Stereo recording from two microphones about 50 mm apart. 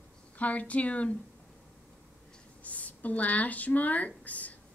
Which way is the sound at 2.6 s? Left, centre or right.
Left.